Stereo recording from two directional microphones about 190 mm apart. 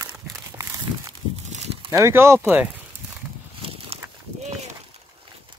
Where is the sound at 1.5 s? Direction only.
35° right (ahead or behind).